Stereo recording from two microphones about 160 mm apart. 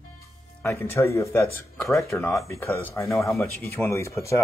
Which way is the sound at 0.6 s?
15° left (ahead or behind).